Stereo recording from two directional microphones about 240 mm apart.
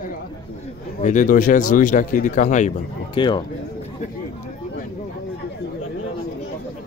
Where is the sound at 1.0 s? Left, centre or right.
Left.